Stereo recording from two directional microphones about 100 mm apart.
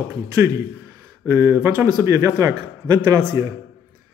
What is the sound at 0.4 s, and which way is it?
A man's voice, 30° right (ahead or behind).